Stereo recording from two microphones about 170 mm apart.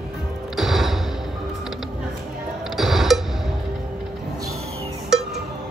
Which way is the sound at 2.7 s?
Centre (ahead or behind).